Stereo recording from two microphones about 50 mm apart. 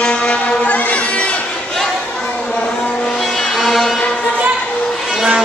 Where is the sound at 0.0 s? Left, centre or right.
Centre.